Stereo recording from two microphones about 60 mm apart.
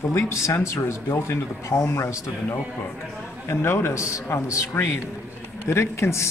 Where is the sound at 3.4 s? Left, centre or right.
Left.